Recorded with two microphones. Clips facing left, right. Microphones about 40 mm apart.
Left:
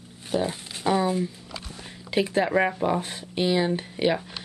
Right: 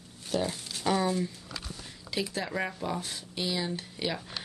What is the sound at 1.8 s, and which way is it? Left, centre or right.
Speech, left.